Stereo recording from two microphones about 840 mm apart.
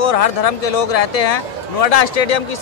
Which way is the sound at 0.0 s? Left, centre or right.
Left.